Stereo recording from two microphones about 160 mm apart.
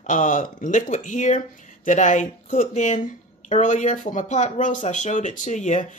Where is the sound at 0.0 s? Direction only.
55° left (ahead or behind).